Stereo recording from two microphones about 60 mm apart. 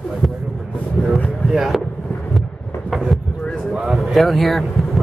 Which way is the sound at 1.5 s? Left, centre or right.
Centre.